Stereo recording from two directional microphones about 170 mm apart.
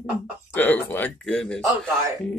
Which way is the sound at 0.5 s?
10° left (ahead or behind).